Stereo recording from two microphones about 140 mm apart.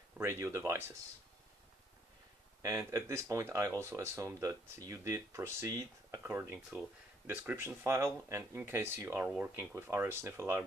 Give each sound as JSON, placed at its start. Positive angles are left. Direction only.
{"t": 0.2, "sound": "speech", "side_deg": -20}
{"t": 2.6, "sound": "speech", "side_deg": -20}